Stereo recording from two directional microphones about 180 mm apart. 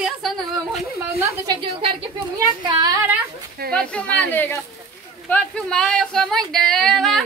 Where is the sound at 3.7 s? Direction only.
5° left (ahead or behind).